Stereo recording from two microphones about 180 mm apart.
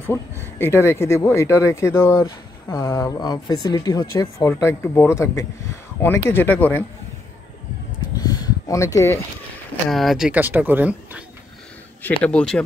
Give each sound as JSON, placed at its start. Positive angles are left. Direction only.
{"t": 0.4, "sound": "speech", "side_deg": 15}
{"t": 8.2, "sound": "a sound", "side_deg": 20}
{"t": 9.8, "sound": "speech", "side_deg": 0}
{"t": 12.2, "sound": "speech", "side_deg": 5}